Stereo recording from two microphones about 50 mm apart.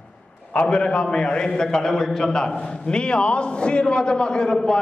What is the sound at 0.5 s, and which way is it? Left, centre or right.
A man's voice, centre.